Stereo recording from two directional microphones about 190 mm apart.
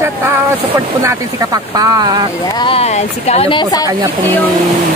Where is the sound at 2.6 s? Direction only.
30° left (ahead or behind).